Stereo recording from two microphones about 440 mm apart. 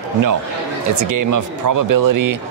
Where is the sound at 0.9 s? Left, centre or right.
Right.